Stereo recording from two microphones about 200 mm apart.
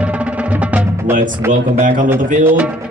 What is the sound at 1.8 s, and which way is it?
Speech, 40° right (ahead or behind).